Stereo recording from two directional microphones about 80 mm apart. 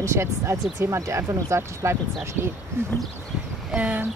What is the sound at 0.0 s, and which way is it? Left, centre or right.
Speech, right.